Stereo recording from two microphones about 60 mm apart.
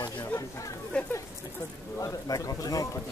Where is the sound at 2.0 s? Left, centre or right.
Left.